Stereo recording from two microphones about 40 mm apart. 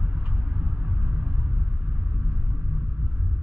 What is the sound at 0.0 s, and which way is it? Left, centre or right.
Vehicle, right.